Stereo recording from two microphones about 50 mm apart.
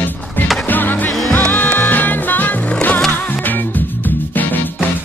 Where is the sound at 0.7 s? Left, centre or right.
Left.